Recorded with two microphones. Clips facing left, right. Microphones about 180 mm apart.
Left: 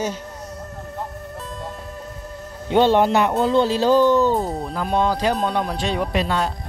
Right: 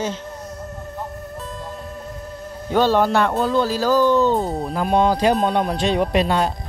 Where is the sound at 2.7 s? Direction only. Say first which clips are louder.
Left 1 dB; 20° left (ahead or behind).